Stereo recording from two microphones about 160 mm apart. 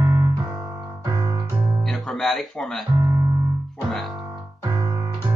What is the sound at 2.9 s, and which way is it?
Music, 20° right (ahead or behind).